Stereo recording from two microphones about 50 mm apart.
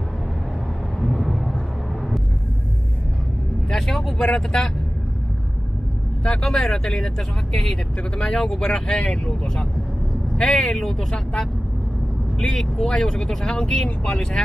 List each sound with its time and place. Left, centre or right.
1.0 s vehicle: centre
3.7 s speech: centre
6.2 s speech: centre
8.2 s speech: centre
10.3 s speech: centre